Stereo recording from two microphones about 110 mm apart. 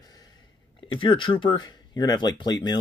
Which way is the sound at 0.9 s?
50° left (ahead or behind).